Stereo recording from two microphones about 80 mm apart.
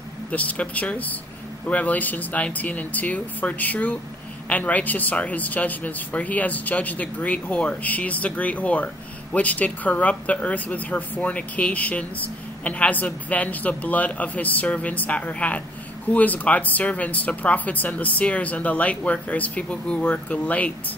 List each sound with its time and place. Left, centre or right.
0.3 s speech: centre